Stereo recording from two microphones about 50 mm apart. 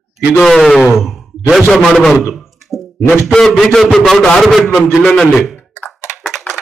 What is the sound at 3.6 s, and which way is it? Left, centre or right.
Speech, centre.